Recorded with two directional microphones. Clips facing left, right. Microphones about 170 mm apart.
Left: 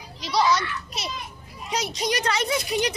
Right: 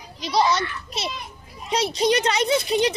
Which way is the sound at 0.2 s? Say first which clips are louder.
Right 1 dB; 25° right (ahead or behind).